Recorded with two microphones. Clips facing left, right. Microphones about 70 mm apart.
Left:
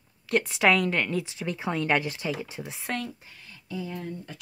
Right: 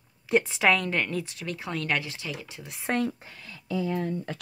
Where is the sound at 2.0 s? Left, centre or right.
Left.